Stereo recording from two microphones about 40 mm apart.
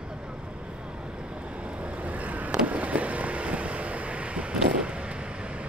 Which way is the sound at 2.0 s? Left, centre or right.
Right.